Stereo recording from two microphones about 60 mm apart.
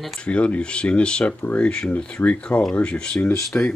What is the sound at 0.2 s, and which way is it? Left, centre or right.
Speech, centre.